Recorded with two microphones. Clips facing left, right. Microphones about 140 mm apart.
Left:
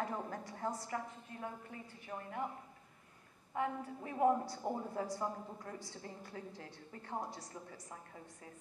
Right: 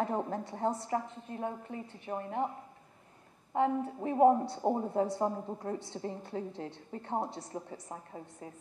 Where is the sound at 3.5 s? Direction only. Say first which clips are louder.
Right 9 dB; 25° right (ahead or behind).